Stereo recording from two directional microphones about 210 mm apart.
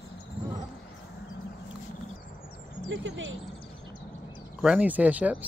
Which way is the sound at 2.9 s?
65° right (ahead or behind).